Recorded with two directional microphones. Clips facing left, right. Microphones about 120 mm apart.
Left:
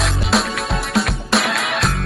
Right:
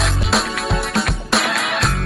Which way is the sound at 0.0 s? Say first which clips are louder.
Left 1 dB; centre (ahead or behind).